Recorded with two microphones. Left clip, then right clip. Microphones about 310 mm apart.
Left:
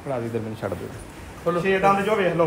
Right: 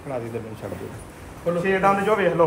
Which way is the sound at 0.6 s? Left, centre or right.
Left.